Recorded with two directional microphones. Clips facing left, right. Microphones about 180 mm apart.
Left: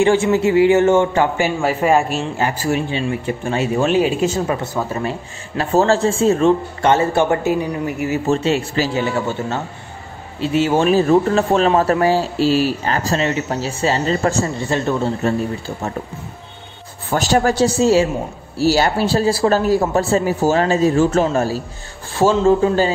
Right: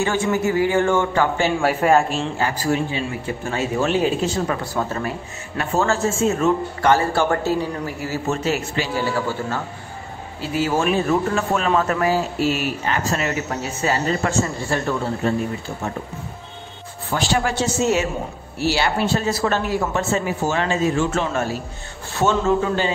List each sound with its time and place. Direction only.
0.0 s a man's voice: 25° left (ahead or behind)
1.6 s a man's voice: centre (ahead or behind)
2.3 s a man's voice: 20° left (ahead or behind)
5.6 s a man's voice: 30° left (ahead or behind)
8.9 s a man's voice: 20° left (ahead or behind)
17.1 s speech: 40° left (ahead or behind)